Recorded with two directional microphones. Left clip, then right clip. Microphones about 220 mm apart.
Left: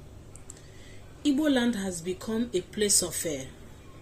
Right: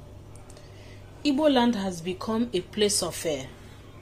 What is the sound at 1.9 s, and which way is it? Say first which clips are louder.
A woman's voice: right 3 dB; 75° right (ahead or behind).